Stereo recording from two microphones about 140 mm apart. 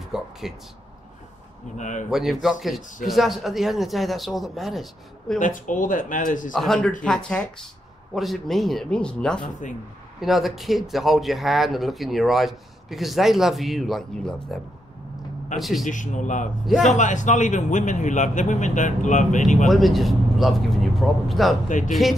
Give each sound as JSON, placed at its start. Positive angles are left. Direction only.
{"t": 0.1, "sound": "speech", "side_deg": 0}
{"t": 1.8, "sound": "a man's voice", "side_deg": 60}
{"t": 2.0, "sound": "speech", "side_deg": 0}
{"t": 5.4, "sound": "speech", "side_deg": 70}
{"t": 6.5, "sound": "speech", "side_deg": 0}
{"t": 15.6, "sound": "speech", "side_deg": 0}
{"t": 15.9, "sound": "a man's voice", "side_deg": 65}
{"t": 16.6, "sound": "speech", "side_deg": 0}
{"t": 16.9, "sound": "a man's voice", "side_deg": 60}
{"t": 19.7, "sound": "speech", "side_deg": 0}
{"t": 21.6, "sound": "a man's voice", "side_deg": 65}